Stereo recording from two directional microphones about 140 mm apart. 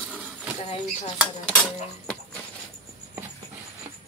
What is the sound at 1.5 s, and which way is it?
Dishes, 5° left (ahead or behind).